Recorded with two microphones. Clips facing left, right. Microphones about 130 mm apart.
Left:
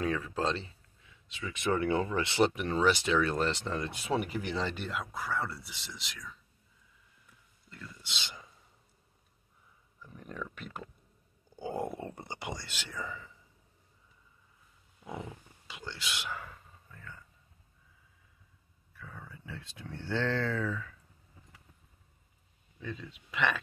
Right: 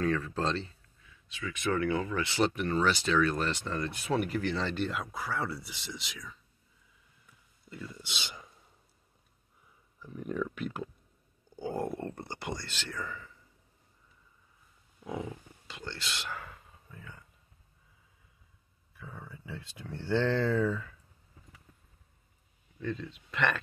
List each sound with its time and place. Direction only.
0.0 s speech: 10° left (ahead or behind)
1.0 s speech: 25° left (ahead or behind); by 6.3 s centre (ahead or behind)
7.7 s speech: 15° right (ahead or behind)
10.1 s speech: 5° right (ahead or behind)
11.5 s speech: 10° left (ahead or behind)
15.6 s speech: 5° left (ahead or behind)
16.9 s speech: 10° right (ahead or behind)
18.9 s a sound: 15° right (ahead or behind)
20.0 s speech: 15° right (ahead or behind)
22.8 s speech: 5° left (ahead or behind)